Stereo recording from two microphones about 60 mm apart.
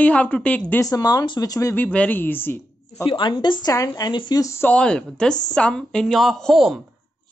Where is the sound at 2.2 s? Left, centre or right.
Left.